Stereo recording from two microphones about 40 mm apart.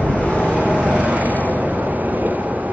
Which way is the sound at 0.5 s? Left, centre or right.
Right.